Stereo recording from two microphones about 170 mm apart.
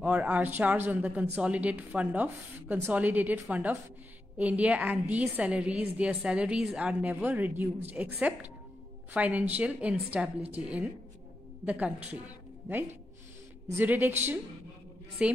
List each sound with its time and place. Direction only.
0.0 s a woman's voice: 5° right (ahead or behind)